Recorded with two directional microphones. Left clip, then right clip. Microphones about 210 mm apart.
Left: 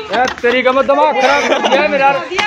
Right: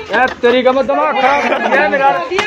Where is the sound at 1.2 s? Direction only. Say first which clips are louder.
Left 1 dB; 40° left (ahead or behind).